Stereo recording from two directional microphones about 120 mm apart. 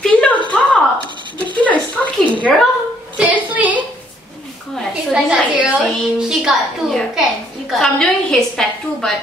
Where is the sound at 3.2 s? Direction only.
15° right (ahead or behind).